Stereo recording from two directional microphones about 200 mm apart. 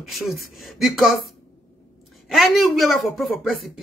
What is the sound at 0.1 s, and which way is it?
A woman's voice, centre (ahead or behind).